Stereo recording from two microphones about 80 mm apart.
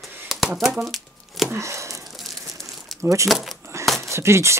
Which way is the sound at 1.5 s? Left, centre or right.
Right.